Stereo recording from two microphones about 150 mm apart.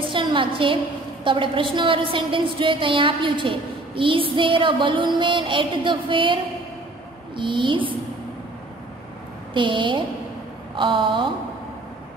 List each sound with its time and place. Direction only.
0.0 s a sound: 35° right (ahead or behind)
1.2 s a woman's voice: 35° right (ahead or behind)
9.5 s a woman's voice: 30° right (ahead or behind)